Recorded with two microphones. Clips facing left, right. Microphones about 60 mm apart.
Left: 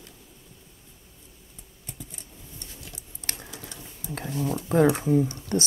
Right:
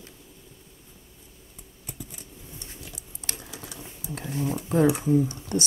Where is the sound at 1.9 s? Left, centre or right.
Centre.